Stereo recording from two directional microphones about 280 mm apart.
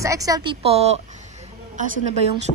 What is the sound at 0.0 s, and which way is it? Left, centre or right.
Speech, centre.